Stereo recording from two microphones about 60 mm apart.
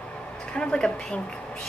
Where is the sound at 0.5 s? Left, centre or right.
Centre.